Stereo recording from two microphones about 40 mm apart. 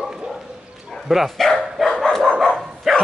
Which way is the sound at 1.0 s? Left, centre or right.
Centre.